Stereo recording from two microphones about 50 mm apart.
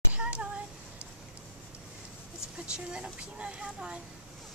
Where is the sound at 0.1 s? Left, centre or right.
Right.